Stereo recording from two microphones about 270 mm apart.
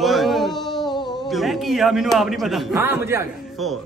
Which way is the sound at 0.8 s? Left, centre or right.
Centre.